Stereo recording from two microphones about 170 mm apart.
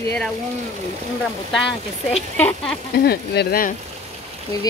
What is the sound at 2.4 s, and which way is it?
Speech, 10° left (ahead or behind).